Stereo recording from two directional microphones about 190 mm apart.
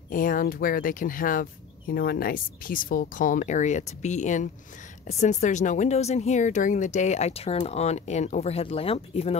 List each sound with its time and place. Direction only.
0.1 s speech: 45° left (ahead or behind)